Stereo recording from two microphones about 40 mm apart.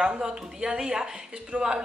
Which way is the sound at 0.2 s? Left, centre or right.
Centre.